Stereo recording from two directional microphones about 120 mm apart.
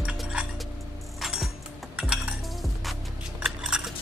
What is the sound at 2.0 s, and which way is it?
Cutlery, 5° right (ahead or behind).